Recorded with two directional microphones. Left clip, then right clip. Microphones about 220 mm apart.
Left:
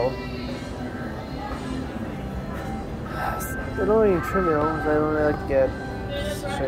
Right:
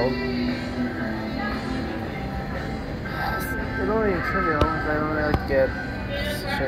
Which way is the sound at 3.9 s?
30° left (ahead or behind).